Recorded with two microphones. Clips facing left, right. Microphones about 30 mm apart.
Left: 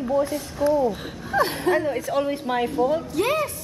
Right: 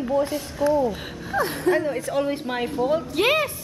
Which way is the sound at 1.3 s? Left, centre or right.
Left.